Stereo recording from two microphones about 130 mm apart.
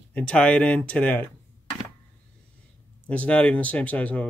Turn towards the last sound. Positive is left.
turn(degrees=10)  # may be behind; listen again after turning